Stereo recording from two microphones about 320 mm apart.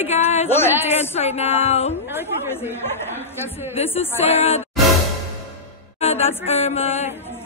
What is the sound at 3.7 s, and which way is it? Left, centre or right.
Music, centre.